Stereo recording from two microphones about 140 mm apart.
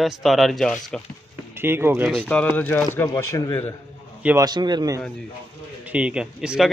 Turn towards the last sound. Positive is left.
turn(degrees=-5)  # may be behind; listen again after turning